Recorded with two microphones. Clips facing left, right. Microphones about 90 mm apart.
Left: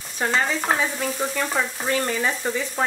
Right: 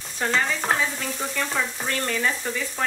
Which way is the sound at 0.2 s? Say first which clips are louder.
Left 2 dB; 10° left (ahead or behind).